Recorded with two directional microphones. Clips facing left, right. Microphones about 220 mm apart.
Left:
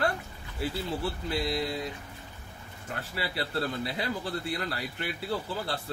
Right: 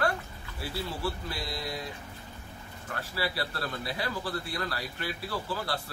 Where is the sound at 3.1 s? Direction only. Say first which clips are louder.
Left 1 dB; 25° left (ahead or behind).